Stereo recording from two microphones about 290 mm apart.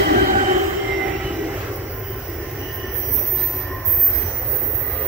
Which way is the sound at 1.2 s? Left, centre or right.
Centre.